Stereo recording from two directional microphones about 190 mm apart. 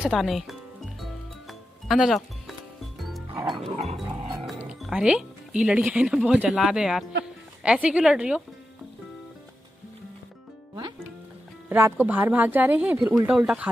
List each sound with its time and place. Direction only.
0.0 s speech: centre (ahead or behind)
1.5 s music: centre (ahead or behind)
3.5 s dog: 35° right (ahead or behind)
4.5 s speech: 5° right (ahead or behind)
11.7 s speech: 10° right (ahead or behind)